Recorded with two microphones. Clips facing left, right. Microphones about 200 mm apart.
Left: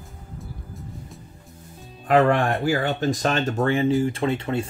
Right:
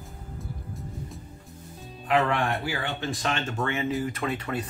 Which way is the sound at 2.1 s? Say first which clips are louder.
Left 6 dB; 45° left (ahead or behind).